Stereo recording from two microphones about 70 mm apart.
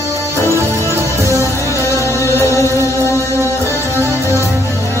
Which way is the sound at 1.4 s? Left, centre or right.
Left.